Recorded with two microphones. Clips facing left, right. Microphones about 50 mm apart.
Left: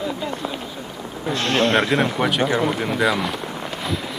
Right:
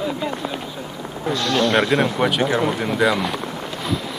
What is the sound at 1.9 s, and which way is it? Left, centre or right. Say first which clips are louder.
Speech: right 1 dB; centre.